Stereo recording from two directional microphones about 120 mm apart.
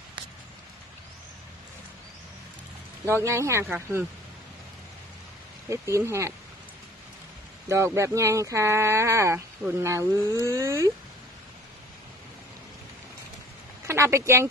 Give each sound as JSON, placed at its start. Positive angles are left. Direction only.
{"t": 3.1, "sound": "speech", "side_deg": -20}
{"t": 5.7, "sound": "speech", "side_deg": -25}
{"t": 7.6, "sound": "speech", "side_deg": -25}
{"t": 13.8, "sound": "speech", "side_deg": -20}